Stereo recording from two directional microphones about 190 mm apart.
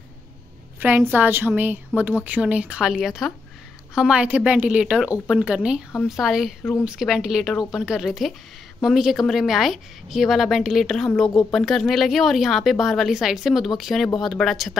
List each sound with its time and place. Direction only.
0.7 s a woman's voice: 10° right (ahead or behind)